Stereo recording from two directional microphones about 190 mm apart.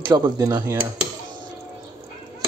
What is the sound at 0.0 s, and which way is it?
Speech, 25° right (ahead or behind).